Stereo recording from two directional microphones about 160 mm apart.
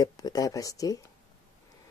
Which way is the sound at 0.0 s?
20° left (ahead or behind).